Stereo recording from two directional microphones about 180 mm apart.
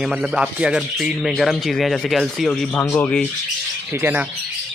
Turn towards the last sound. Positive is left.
turn(degrees=-10)  # may be behind; listen again after turning